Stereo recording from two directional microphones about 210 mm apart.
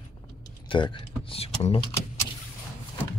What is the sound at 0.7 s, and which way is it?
Speech, 25° left (ahead or behind).